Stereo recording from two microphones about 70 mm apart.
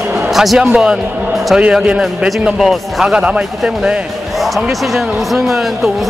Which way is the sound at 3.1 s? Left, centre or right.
Centre.